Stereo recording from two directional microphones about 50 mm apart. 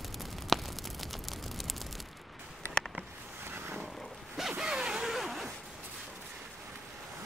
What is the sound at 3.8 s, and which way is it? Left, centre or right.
Zipper, centre.